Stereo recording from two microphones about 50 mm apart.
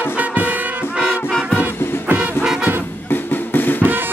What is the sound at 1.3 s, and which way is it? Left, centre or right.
Music, centre.